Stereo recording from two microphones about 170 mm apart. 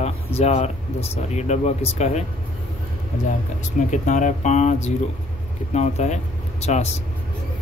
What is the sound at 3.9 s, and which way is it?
Speech, 45° left (ahead or behind).